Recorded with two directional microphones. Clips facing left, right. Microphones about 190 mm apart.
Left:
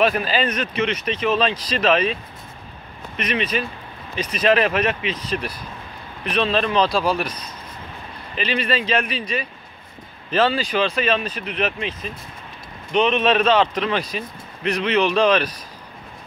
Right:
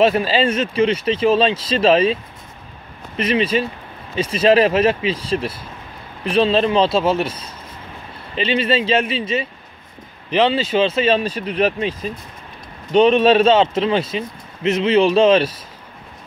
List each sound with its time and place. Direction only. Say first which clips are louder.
0.0 s speech: right 4 dB; 25° right (ahead or behind)
3.2 s speech: right 6 dB; 30° right (ahead or behind)
8.4 s speech: right 5 dB; 25° right (ahead or behind)